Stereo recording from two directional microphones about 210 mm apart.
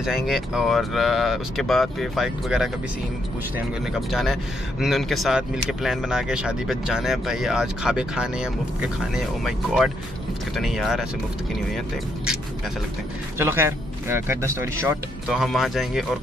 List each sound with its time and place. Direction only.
0.0 s a man's voice: centre (ahead or behind)
13.4 s speech: 10° right (ahead or behind)
15.3 s a man's voice: centre (ahead or behind)